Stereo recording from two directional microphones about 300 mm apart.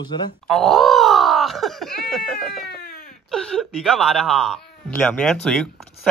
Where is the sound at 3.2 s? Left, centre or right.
Centre.